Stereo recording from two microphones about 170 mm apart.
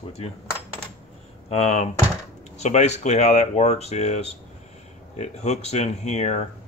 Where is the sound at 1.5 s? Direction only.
40° left (ahead or behind).